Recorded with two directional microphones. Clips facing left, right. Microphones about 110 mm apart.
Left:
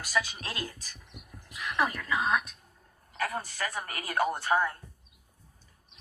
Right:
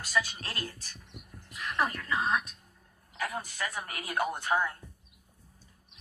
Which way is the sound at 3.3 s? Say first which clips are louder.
Right 1 dB; centre (ahead or behind).